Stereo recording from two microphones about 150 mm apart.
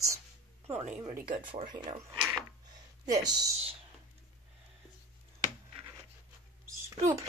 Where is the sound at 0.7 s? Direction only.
50° right (ahead or behind).